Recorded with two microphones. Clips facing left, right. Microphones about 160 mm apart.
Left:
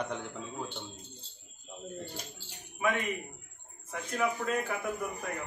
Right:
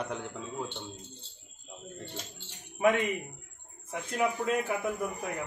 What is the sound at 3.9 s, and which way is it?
Speech, 20° right (ahead or behind).